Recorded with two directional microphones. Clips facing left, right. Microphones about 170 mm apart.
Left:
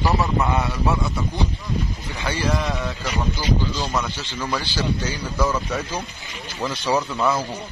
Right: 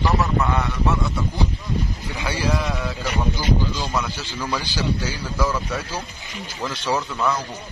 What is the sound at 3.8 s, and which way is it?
Speech, centre (ahead or behind).